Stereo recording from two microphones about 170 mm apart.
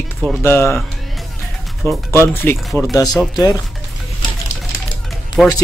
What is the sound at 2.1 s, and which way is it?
Speech, 15° left (ahead or behind).